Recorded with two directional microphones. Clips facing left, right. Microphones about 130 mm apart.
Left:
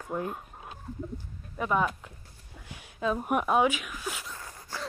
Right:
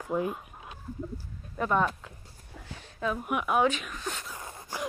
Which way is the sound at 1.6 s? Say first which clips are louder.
Right 1 dB; 5° left (ahead or behind).